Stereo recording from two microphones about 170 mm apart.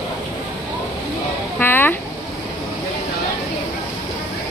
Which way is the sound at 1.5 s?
10° left (ahead or behind).